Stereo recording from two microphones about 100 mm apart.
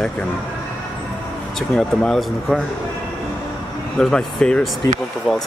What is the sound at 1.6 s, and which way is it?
Speech, 5° left (ahead or behind).